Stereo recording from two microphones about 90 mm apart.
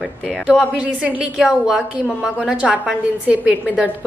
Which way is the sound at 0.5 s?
15° right (ahead or behind).